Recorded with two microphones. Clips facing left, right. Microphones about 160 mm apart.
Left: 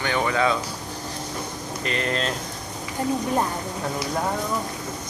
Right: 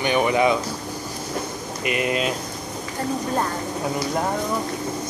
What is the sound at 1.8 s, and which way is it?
Speech, 10° right (ahead or behind).